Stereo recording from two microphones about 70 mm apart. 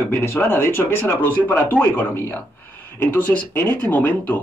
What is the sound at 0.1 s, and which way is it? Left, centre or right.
A man's voice, left.